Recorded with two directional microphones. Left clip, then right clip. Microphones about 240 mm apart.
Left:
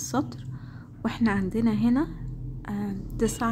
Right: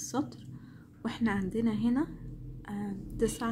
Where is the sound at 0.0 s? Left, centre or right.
Centre.